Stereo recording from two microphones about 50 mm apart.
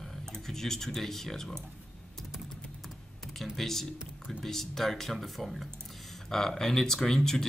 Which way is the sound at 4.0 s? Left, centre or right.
Centre.